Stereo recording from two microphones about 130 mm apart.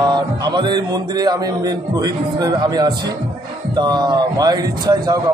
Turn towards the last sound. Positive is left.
turn(degrees=-30)  # may be behind; listen again after turning